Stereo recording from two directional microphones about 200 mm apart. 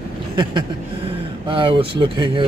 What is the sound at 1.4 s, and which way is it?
Speech, 25° right (ahead or behind).